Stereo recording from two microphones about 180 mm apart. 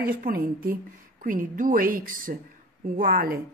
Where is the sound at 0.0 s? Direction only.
55° right (ahead or behind).